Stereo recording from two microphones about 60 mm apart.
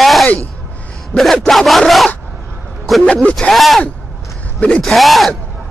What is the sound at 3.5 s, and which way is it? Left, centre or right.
Speech, centre.